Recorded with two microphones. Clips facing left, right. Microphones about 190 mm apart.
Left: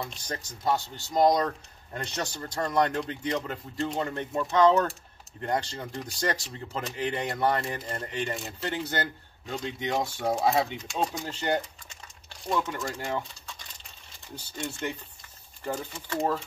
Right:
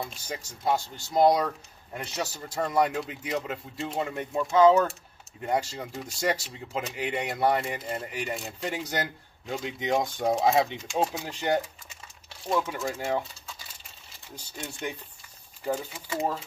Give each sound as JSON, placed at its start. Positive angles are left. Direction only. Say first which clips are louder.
{"t": 0.0, "sound": "speech", "louder": "even", "side_deg": -5}
{"t": 14.6, "sound": "speech", "louder": "left 2 dB", "side_deg": -10}